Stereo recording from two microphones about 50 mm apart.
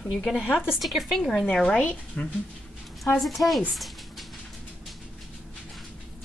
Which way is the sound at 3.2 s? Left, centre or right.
Centre.